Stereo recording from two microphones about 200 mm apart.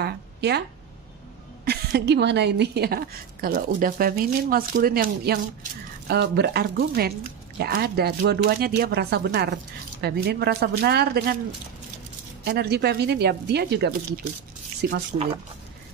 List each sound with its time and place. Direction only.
0.0 s a sound: 55° right (ahead or behind)
1.6 s a woman's voice: 55° right (ahead or behind)
12.4 s speech: 55° right (ahead or behind)